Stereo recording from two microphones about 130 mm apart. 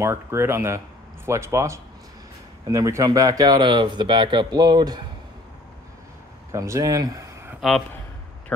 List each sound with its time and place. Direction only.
0.0 s speech: 20° right (ahead or behind)
6.5 s speech: 20° right (ahead or behind)